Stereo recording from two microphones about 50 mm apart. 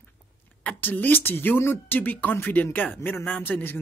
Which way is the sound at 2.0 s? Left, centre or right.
Left.